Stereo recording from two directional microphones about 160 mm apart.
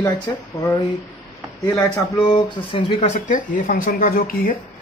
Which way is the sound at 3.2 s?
55° left (ahead or behind).